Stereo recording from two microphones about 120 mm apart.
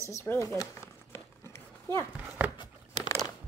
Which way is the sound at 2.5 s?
35° left (ahead or behind).